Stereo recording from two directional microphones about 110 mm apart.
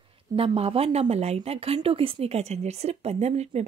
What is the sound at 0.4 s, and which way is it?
A woman's voice, 60° right (ahead or behind).